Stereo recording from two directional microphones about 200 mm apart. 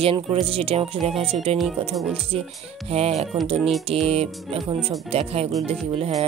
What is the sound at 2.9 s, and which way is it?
Speech, 30° right (ahead or behind).